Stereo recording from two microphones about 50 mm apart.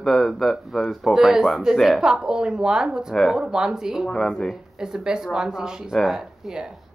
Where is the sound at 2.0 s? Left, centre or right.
Centre.